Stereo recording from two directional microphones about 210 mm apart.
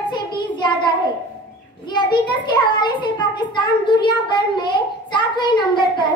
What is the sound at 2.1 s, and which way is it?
A child's voice, 20° left (ahead or behind).